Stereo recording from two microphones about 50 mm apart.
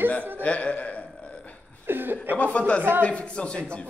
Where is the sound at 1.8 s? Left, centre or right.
Right.